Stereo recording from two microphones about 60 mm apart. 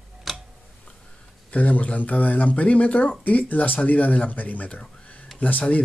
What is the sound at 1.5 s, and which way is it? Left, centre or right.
Speech, left.